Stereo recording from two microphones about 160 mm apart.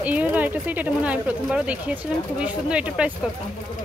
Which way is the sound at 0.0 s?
10° right (ahead or behind).